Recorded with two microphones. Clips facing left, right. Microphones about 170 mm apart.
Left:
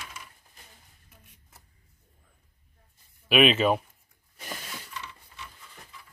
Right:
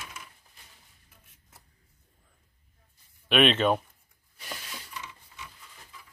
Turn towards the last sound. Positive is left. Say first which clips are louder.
# left 1 dB
turn(degrees=-10)  # may be behind; listen again after turning